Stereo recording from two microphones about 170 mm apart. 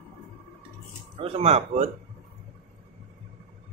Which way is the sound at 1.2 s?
35° right (ahead or behind).